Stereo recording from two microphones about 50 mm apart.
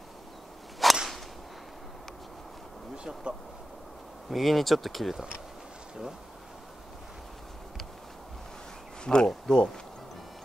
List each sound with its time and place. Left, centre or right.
0.8 s whip: centre
3.0 s speech: centre
4.3 s speech: centre
9.0 s speech: centre